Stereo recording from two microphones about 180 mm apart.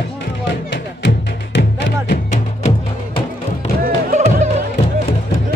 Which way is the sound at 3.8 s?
45° right (ahead or behind).